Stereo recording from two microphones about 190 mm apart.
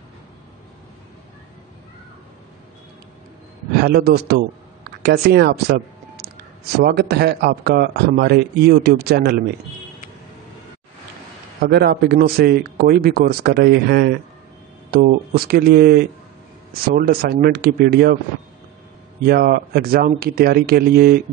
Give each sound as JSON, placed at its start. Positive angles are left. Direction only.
{"t": 3.8, "sound": "speech", "side_deg": -55}
{"t": 6.8, "sound": "speech", "side_deg": -55}
{"t": 11.6, "sound": "speech", "side_deg": -55}
{"t": 19.2, "sound": "speech", "side_deg": -55}